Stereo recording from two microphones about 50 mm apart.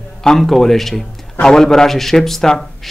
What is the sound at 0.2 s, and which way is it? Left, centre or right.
A man's voice, centre.